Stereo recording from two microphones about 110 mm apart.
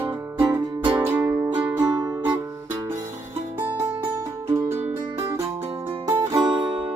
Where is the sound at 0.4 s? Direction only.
45° right (ahead or behind).